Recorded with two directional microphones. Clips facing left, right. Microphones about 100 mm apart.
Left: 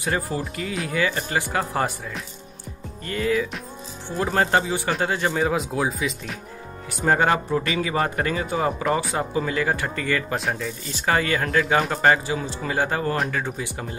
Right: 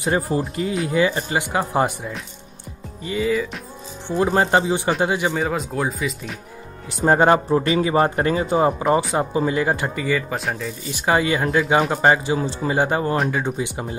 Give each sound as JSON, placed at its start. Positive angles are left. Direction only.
{"t": 0.0, "sound": "a man's voice", "side_deg": -25}
{"t": 3.0, "sound": "speech", "side_deg": -5}
{"t": 4.2, "sound": "a man's voice", "side_deg": -20}
{"t": 5.3, "sound": "speech", "side_deg": 0}
{"t": 7.1, "sound": "a man's voice", "side_deg": -30}
{"t": 9.9, "sound": "speech", "side_deg": -5}
{"t": 10.9, "sound": "speech", "side_deg": -15}
{"t": 11.6, "sound": "speech", "side_deg": 0}
{"t": 11.9, "sound": "a man's voice", "side_deg": -20}